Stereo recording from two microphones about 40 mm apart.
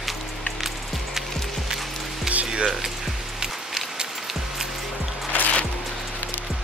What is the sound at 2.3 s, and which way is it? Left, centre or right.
Music, centre.